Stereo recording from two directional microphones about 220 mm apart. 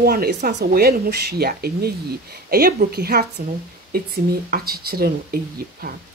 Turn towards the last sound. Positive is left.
turn(degrees=-45)  # may be behind; listen again after turning